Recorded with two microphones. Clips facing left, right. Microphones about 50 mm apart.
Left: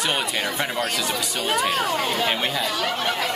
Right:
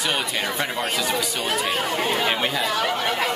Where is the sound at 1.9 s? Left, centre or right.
Right.